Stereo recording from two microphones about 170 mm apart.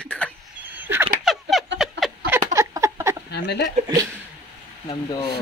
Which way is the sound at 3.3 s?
75° left (ahead or behind).